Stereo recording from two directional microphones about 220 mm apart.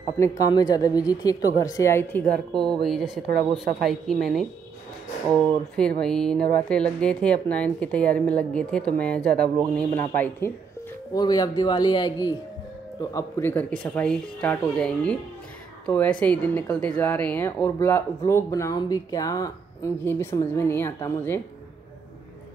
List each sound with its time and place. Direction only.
0.2 s speech: 15° left (ahead or behind)